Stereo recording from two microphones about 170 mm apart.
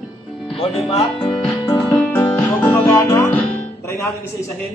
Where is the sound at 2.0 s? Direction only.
10° left (ahead or behind).